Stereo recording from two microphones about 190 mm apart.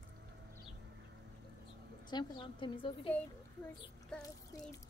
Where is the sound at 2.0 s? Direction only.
25° left (ahead or behind).